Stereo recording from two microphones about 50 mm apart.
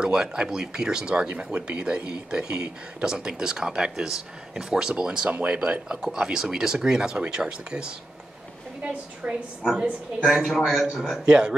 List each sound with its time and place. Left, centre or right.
0.0 s speech: centre
9.2 s speech: centre
10.2 s a man's voice: centre